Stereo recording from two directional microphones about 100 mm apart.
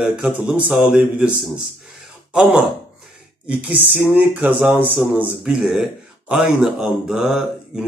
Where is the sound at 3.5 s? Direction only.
15° right (ahead or behind).